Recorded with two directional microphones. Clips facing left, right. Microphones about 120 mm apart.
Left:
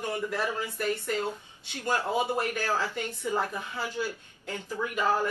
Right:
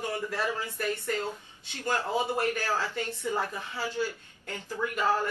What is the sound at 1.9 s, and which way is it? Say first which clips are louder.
A woman's voice: left 1 dB; 15° left (ahead or behind).